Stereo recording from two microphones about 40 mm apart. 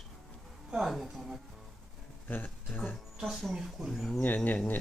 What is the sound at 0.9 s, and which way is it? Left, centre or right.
Speech, centre.